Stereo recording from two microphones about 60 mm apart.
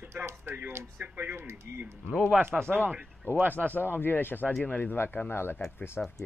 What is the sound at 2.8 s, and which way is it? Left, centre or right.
Speech, right.